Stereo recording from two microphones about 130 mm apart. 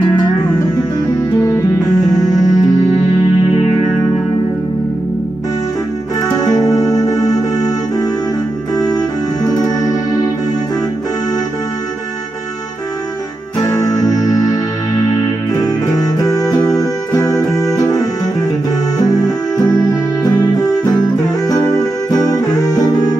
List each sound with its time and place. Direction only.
0.1 s music: 35° left (ahead or behind)
6.3 s music: 30° left (ahead or behind)
13.6 s music: 30° left (ahead or behind)